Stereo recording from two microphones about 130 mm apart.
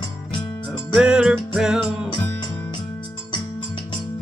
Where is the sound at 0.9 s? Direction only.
5° right (ahead or behind).